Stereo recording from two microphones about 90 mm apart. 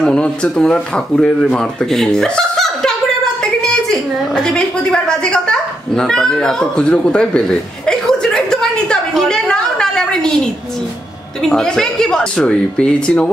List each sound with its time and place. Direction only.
0.0 s speech: 10° left (ahead or behind)
3.9 s a sound: 5° left (ahead or behind)
11.4 s speech: 5° left (ahead or behind)